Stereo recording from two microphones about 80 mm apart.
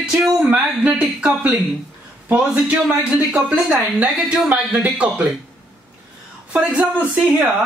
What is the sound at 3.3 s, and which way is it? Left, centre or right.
Speech, centre.